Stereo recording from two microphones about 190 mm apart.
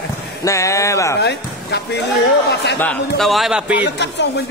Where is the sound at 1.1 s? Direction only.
60° left (ahead or behind).